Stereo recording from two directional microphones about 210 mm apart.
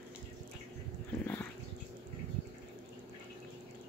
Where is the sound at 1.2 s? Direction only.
10° left (ahead or behind).